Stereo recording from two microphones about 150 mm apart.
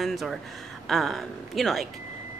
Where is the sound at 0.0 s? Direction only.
Centre (ahead or behind).